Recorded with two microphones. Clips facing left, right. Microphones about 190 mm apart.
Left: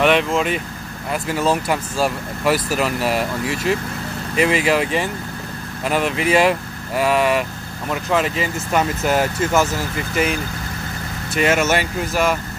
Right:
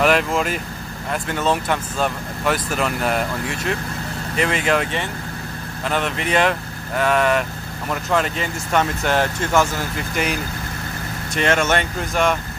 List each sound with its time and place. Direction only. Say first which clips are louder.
0.0 s speech: left 1 dB; centre (ahead or behind)